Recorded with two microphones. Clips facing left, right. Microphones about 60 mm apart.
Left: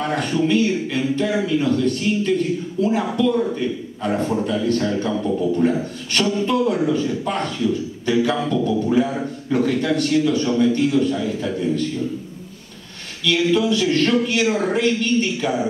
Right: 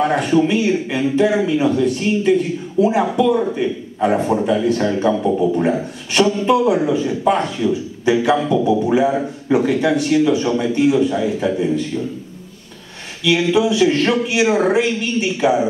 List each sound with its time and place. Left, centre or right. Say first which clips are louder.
0.0 s a man's voice: right 5 dB; centre
13.2 s a man's voice: right 3 dB; centre